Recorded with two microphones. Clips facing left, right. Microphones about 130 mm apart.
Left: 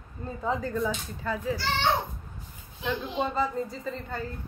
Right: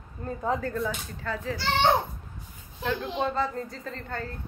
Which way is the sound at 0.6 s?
Centre (ahead or behind).